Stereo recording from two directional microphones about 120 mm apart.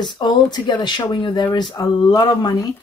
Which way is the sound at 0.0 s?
40° left (ahead or behind).